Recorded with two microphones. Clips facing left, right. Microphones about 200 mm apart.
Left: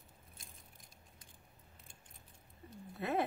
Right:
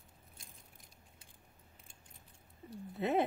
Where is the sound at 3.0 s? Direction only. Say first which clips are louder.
Right 4 dB; 20° right (ahead or behind).